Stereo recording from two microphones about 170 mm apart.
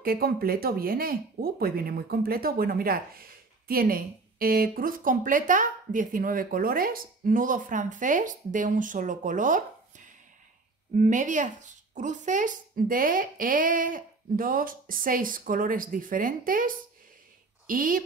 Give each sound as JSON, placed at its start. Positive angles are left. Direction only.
{"t": 0.0, "sound": "speech", "side_deg": -60}